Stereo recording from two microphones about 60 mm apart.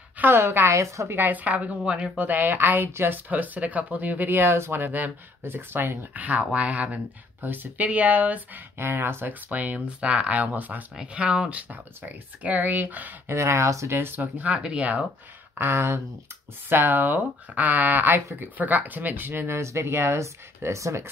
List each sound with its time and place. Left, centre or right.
0.2 s a woman's voice: right
0.7 s speech: right
1.1 s speech: right
3.3 s speech: right
7.4 s speech: right
8.7 s speech: right
13.3 s speech: right
13.8 s speech: right
14.4 s speech: right
15.5 s a woman's voice: right
16.6 s speech: right